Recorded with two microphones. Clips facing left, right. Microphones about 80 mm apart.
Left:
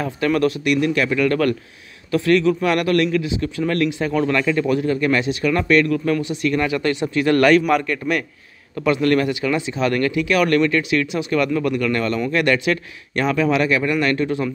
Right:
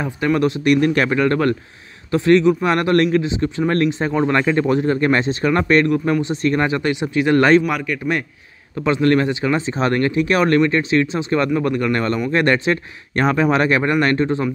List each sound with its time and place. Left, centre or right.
0.0 s speech: centre
0.7 s speech: right
5.9 s speech: right
6.8 s speech: centre
7.6 s a man's voice: centre
8.8 s speech: right